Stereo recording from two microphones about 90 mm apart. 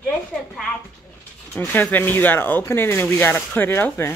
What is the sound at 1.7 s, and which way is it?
Speech, 20° left (ahead or behind).